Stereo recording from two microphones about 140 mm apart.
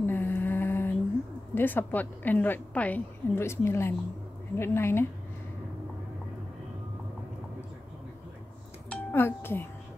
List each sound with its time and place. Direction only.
0.0 s a sound: 15° left (ahead or behind)
1.5 s a woman's voice: 15° left (ahead or behind)
8.9 s speech: 15° left (ahead or behind)